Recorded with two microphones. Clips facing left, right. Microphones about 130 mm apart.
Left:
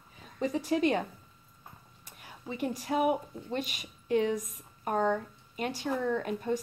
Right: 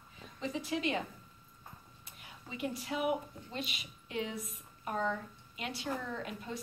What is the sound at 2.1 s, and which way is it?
A woman's voice, 45° left (ahead or behind).